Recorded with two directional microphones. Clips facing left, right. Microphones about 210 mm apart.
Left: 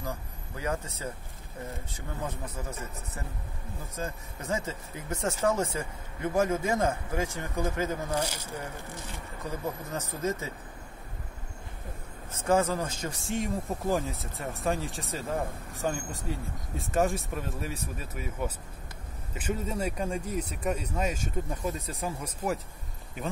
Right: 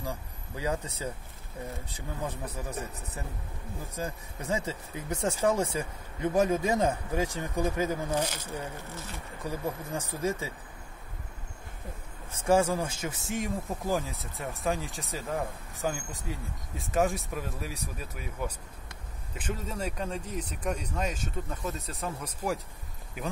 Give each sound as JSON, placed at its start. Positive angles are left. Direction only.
{"t": 0.6, "sound": "speech", "side_deg": -15}
{"t": 3.9, "sound": "speech", "side_deg": -15}
{"t": 8.1, "sound": "speech", "side_deg": 10}
{"t": 9.9, "sound": "speech", "side_deg": -10}
{"t": 12.3, "sound": "speech", "side_deg": -10}
{"t": 13.0, "sound": "speech", "side_deg": 0}